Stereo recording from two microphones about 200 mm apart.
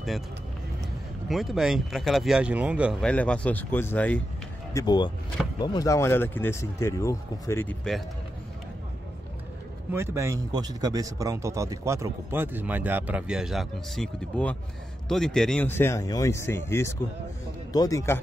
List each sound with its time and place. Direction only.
1.3 s speech: centre (ahead or behind)
4.7 s speech: 20° left (ahead or behind); by 8.0 s 5° left (ahead or behind)
9.9 s speech: 15° right (ahead or behind); by 18.2 s 15° left (ahead or behind)